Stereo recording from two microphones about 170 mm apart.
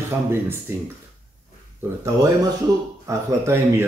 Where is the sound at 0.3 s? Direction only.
15° right (ahead or behind).